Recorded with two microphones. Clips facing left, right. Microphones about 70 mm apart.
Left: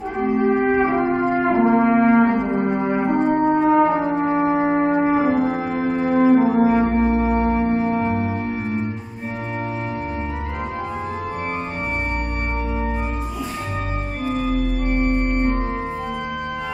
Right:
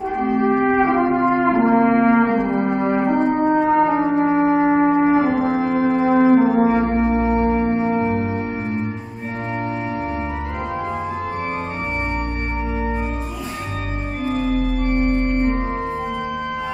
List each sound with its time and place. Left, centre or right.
0.5 s music: centre
0.9 s brass instrument: centre
2.1 s music: centre
2.5 s music: centre
7.2 s singing bowl: centre
7.8 s music: centre
14.3 s organ: centre